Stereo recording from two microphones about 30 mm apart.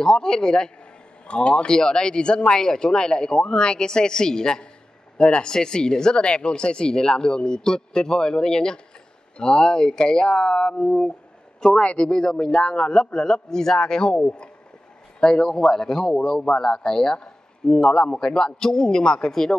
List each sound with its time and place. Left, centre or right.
0.0 s speech: left
1.2 s speech: left
1.7 s speech: left
11.6 s speech: centre
15.1 s speech: left